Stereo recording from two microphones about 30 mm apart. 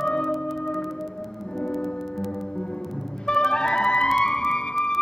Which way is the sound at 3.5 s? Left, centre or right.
Left.